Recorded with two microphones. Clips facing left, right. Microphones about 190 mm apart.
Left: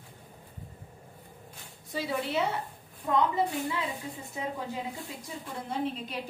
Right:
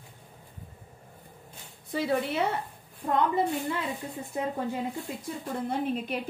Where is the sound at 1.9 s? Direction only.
55° right (ahead or behind).